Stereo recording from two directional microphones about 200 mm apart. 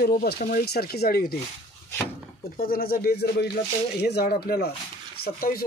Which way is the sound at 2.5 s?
45° left (ahead or behind).